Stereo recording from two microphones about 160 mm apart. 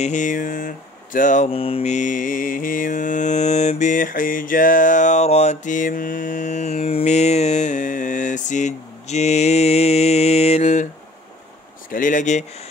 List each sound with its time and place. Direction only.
0.0 s a sound: 50° left (ahead or behind)
1.5 s mantra: 35° left (ahead or behind)
11.9 s mantra: 55° left (ahead or behind)